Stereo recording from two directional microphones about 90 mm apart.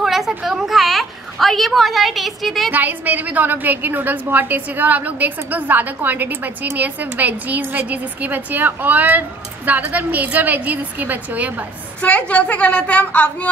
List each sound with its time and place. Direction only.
0.0 s a sound: centre (ahead or behind)
2.7 s a woman's voice: 20° right (ahead or behind)
12.0 s a woman's voice: 15° left (ahead or behind)